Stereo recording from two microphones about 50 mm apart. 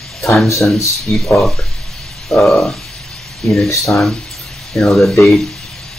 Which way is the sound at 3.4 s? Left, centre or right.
Centre.